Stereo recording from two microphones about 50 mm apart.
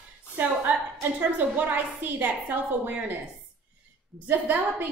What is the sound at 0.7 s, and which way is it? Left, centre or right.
Speech, right.